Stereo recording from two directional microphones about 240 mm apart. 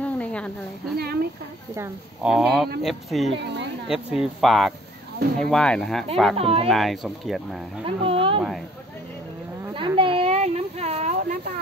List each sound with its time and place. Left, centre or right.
0.0 s a sound: centre
1.8 s speech: centre
3.3 s speech: right
3.9 s speech: centre
6.3 s speech: right
6.7 s speech: centre
7.8 s speech: right
8.4 s speech: centre
9.8 s a sound: right